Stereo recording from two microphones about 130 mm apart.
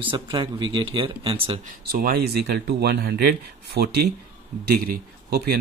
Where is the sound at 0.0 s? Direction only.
40° right (ahead or behind).